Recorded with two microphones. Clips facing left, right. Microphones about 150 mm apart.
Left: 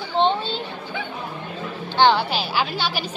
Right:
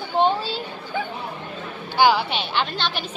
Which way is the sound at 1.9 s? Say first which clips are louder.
Left 1 dB; 10° right (ahead or behind).